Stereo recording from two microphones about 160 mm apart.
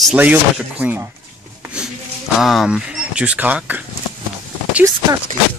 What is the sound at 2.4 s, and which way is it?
Speech, centre (ahead or behind).